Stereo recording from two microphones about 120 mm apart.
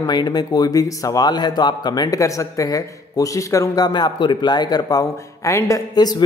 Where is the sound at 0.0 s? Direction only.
35° left (ahead or behind).